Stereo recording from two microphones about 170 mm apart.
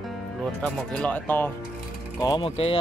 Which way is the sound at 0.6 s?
5° left (ahead or behind).